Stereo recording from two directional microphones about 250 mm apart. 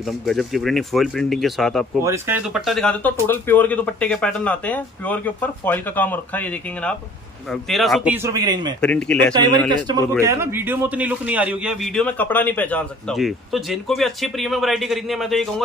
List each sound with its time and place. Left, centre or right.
0.2 s a man's voice: centre
8.8 s a man's voice: centre
9.3 s a man's voice: centre